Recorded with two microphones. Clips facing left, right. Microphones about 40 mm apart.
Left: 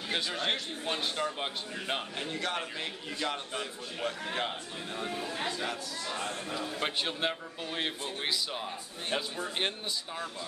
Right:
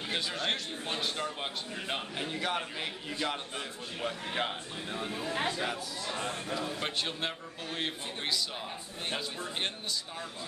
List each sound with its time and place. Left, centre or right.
0.1 s speech: centre
2.2 s speech: centre
5.2 s speech: right
6.1 s speech: centre
6.8 s a man's voice: centre